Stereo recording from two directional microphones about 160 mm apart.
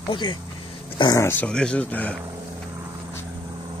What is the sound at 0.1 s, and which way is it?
Speech, 30° left (ahead or behind).